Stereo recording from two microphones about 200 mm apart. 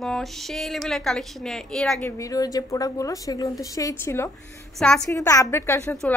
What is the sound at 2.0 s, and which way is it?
A woman's voice, 15° left (ahead or behind).